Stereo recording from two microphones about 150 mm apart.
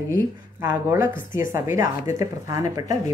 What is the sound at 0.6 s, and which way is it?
A woman's voice, 20° right (ahead or behind).